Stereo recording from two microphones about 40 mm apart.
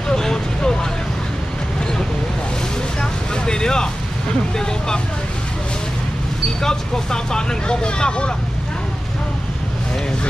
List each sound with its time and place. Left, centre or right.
0.1 s vehicle: centre
3.0 s vehicle: centre
4.6 s speech: centre
6.6 s speech: centre